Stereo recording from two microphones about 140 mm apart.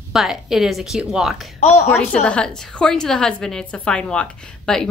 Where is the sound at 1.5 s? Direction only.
50° left (ahead or behind).